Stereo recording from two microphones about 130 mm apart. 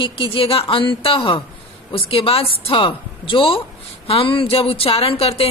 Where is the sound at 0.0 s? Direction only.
40° left (ahead or behind).